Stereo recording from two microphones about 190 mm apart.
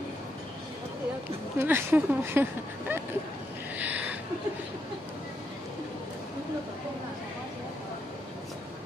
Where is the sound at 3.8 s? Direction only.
10° right (ahead or behind).